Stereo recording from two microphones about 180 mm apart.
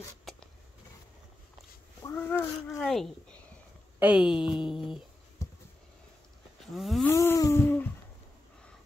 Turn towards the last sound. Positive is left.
turn(degrees=15)  # may be behind; listen again after turning